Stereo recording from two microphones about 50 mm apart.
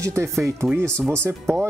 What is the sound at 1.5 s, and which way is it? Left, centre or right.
Speech, right.